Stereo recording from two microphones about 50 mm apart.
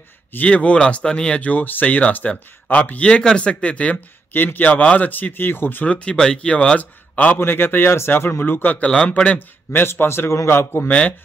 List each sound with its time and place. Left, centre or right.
0.5 s speech: left
4.3 s speech: left
5.9 s speech: left
7.3 s speech: left
9.8 s a man's voice: left
10.9 s speech: left